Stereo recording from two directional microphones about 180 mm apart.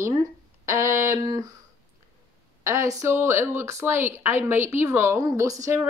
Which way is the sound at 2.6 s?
15° right (ahead or behind).